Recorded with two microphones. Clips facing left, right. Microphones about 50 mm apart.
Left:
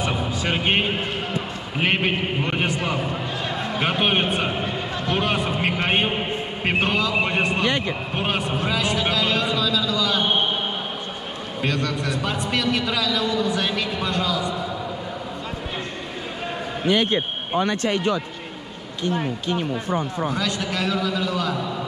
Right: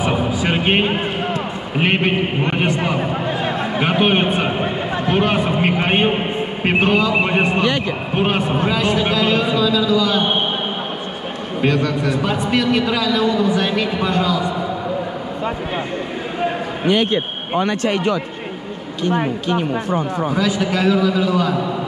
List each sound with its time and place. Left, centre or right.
0.0 s music: centre
1.8 s a man's voice: centre
2.8 s a man's voice: right
3.8 s a man's voice: centre
4.6 s speech: right
5.2 s a man's voice: centre
11.6 s a man's voice: centre
17.6 s speech: right
20.3 s a man's voice: centre